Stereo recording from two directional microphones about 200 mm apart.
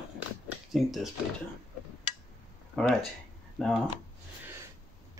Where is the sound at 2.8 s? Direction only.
5° left (ahead or behind).